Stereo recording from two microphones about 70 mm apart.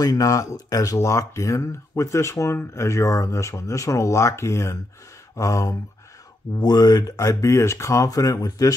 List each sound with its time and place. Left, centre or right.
0.0 s speech: left
5.3 s a sound: left
6.6 s speech: left
7.1 s speech: left